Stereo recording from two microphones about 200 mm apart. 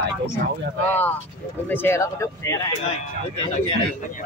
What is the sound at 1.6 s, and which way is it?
Speech, 10° left (ahead or behind).